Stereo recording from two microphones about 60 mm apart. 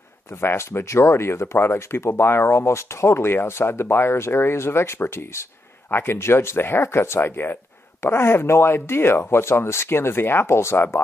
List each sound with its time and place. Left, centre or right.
0.4 s speech: left